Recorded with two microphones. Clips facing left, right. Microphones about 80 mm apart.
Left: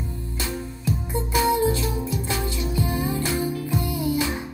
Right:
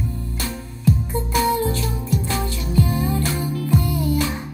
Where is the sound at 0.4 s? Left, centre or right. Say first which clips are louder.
Even; centre.